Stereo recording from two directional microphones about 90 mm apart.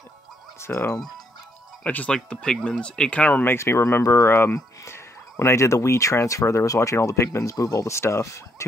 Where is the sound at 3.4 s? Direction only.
30° left (ahead or behind).